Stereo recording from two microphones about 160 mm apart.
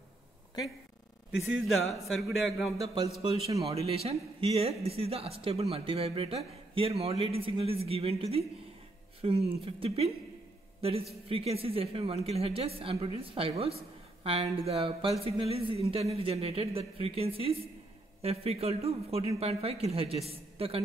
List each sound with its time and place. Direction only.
2.0 s speech: centre (ahead or behind)
3.2 s a man's voice: 40° right (ahead or behind)